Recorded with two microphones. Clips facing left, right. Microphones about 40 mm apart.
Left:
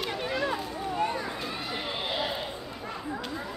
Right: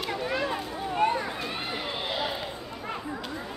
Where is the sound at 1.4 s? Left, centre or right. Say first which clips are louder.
Right 1 dB; centre.